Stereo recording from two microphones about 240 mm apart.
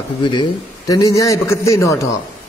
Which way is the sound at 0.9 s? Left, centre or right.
Centre.